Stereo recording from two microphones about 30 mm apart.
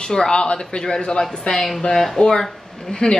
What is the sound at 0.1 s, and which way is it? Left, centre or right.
Speech, left.